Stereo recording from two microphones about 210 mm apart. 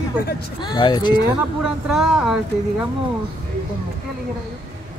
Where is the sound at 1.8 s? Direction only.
5° right (ahead or behind).